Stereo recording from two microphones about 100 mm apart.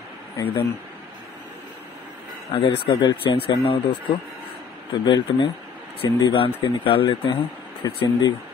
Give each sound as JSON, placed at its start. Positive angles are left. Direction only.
{"t": 2.5, "sound": "speech", "side_deg": 65}
{"t": 5.0, "sound": "speech", "side_deg": 50}
{"t": 6.0, "sound": "speech", "side_deg": 35}
{"t": 6.3, "sound": "speech", "side_deg": 60}
{"t": 7.8, "sound": "speech", "side_deg": 50}